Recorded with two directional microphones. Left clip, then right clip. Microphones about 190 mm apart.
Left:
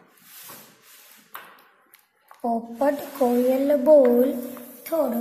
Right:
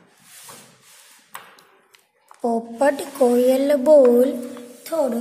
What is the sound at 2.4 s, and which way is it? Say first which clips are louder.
A woman's voice: right 4 dB; 30° right (ahead or behind).